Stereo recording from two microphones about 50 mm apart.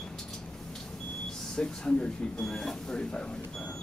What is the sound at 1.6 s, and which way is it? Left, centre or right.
Speech, centre.